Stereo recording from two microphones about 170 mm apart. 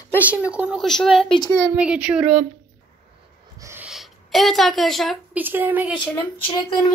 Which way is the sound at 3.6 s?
15° right (ahead or behind).